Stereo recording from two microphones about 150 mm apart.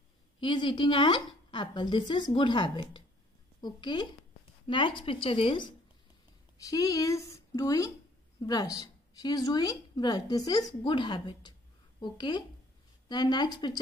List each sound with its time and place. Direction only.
0.4 s a woman's voice: 30° left (ahead or behind)